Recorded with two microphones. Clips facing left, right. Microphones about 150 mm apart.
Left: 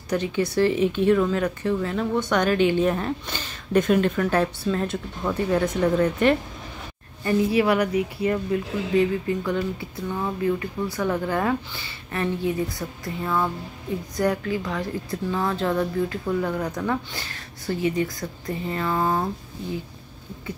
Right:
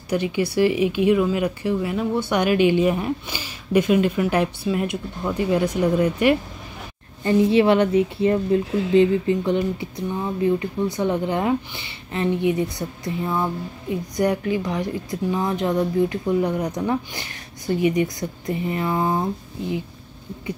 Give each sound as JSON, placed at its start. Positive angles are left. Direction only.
{"t": 0.1, "sound": "speech", "side_deg": -10}
{"t": 7.2, "sound": "speech", "side_deg": -25}